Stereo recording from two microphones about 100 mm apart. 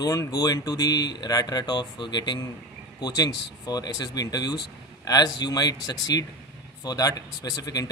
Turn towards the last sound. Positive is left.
turn(degrees=40)  # may be behind; listen again after turning